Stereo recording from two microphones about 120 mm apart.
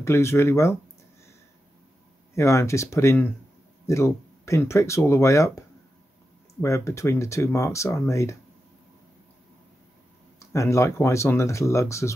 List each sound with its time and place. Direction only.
0.0 s speech: 25° left (ahead or behind)
2.3 s speech: 25° left (ahead or behind)
6.6 s speech: 25° left (ahead or behind)
10.4 s speech: 25° left (ahead or behind)